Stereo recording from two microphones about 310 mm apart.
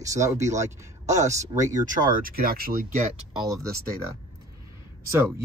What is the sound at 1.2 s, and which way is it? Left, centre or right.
Speech, right.